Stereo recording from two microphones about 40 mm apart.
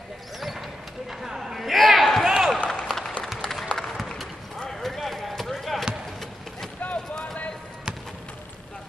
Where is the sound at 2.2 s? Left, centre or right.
Centre.